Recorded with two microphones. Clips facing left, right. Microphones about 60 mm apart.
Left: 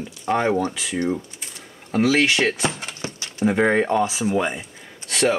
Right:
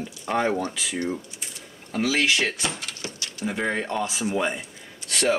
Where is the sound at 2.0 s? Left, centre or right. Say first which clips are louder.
Left 4 dB; centre.